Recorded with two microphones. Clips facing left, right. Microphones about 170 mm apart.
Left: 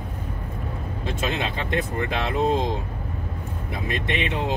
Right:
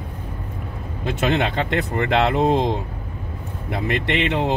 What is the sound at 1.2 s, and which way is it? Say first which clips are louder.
Speech: right 8 dB; 70° right (ahead or behind).